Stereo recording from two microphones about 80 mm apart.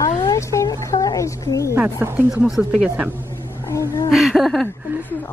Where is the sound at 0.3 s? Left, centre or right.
Left.